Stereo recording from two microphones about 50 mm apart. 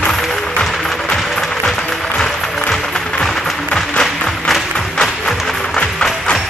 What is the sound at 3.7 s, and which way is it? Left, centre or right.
Music, centre.